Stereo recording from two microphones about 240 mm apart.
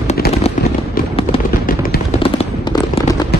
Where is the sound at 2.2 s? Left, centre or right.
Left.